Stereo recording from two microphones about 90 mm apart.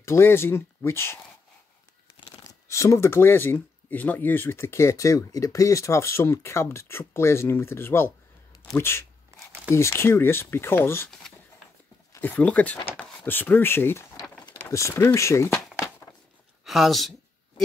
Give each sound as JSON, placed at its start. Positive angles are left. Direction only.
{"t": 0.0, "sound": "speech", "side_deg": 30}
{"t": 2.3, "sound": "speech", "side_deg": 35}
{"t": 9.3, "sound": "a sound", "side_deg": -35}
{"t": 9.7, "sound": "speech", "side_deg": 30}
{"t": 12.2, "sound": "speech", "side_deg": 15}
{"t": 16.6, "sound": "speech", "side_deg": 0}